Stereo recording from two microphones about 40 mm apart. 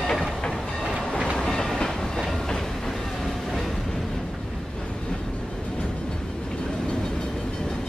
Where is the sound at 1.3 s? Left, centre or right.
Centre.